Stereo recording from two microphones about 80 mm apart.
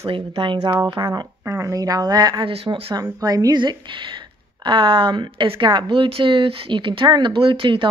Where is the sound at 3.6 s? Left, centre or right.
Right.